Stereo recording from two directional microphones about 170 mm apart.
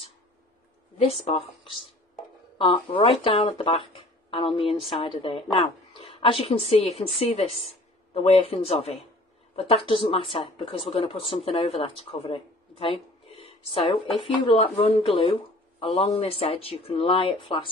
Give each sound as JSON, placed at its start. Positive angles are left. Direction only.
{"t": 1.0, "sound": "speech", "side_deg": 35}
{"t": 2.6, "sound": "speech", "side_deg": 30}